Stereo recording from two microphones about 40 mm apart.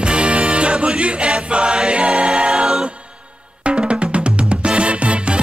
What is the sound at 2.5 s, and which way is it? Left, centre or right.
Choir, centre.